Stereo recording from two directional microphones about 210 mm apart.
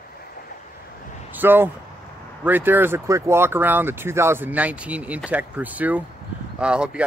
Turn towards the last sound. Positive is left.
turn(degrees=-5)  # may be behind; listen again after turning